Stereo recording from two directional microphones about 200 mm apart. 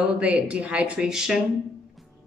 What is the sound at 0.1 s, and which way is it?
Speech, 5° right (ahead or behind).